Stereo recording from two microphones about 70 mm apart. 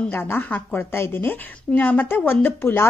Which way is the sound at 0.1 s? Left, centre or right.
Left.